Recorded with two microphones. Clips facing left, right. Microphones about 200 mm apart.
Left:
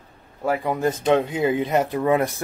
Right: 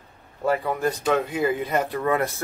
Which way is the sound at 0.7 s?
20° left (ahead or behind).